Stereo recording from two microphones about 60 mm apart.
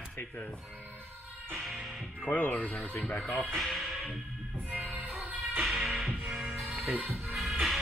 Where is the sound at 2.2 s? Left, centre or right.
Left.